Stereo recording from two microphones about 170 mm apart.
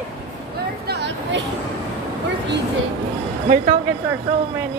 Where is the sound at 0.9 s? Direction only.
90° right.